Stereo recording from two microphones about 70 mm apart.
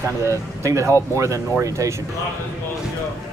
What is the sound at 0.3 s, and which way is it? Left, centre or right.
Speech, right.